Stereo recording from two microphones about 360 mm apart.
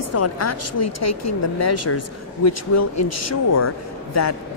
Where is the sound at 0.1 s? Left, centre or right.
Left.